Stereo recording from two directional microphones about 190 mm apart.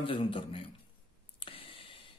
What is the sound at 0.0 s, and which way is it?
Speech, 25° left (ahead or behind).